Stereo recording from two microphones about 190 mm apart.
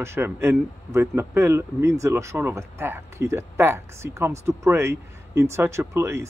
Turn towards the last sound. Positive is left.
turn(degrees=-15)  # may be behind; listen again after turning